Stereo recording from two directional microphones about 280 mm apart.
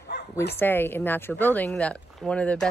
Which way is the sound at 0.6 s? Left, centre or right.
Centre.